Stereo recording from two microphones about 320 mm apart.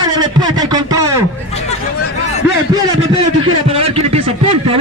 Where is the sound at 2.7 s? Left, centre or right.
Centre.